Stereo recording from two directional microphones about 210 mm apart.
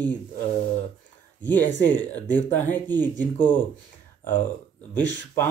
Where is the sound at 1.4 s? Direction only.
10° left (ahead or behind).